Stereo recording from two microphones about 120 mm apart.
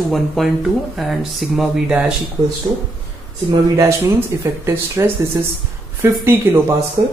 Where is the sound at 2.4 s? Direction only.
25° right (ahead or behind).